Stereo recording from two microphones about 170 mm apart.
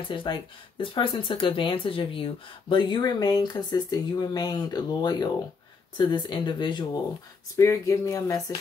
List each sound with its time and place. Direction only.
0.1 s speech: 30° left (ahead or behind)